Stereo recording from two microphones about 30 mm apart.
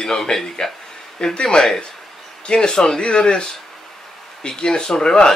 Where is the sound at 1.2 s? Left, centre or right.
Left.